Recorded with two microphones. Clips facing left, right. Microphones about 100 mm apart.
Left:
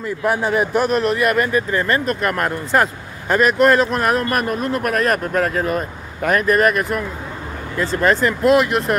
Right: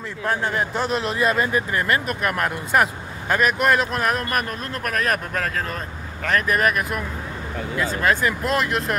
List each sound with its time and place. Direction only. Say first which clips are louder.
0.2 s a man's voice: left 5 dB; 15° left (ahead or behind)
1.1 s speech: left 3 dB; 20° right (ahead or behind)
1.7 s speech: left 4 dB; 10° right (ahead or behind); by 6.4 s 15° left (ahead or behind)
6.4 s speech: left 5 dB; centre (ahead or behind)